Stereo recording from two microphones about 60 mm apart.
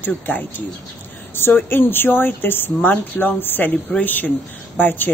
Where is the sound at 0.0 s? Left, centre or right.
Left.